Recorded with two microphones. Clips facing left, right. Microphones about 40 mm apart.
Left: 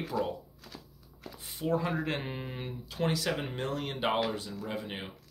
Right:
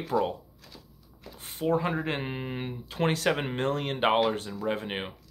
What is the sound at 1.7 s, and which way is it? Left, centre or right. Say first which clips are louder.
Speech: right 3 dB; right.